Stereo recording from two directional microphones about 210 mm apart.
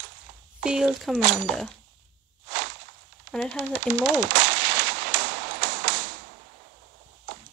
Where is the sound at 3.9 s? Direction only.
55° right (ahead or behind).